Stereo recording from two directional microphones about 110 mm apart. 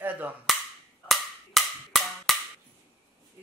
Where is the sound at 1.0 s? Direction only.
Centre (ahead or behind).